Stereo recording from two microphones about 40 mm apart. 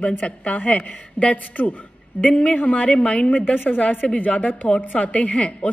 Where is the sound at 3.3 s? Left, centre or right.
Left.